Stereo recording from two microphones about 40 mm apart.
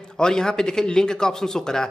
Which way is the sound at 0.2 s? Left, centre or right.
Centre.